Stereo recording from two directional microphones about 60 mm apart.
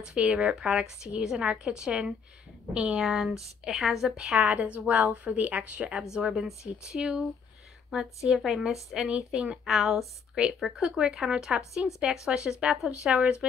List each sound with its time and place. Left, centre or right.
0.0 s a woman's voice: centre
4.4 s a woman's voice: right
6.1 s a woman's voice: centre